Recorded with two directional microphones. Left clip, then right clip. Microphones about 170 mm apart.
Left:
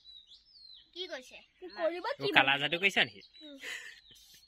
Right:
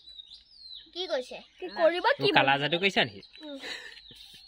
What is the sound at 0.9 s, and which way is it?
Speech, 90° right.